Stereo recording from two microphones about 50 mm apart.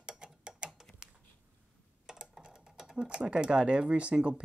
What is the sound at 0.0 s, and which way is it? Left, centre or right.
Tick-tock, centre.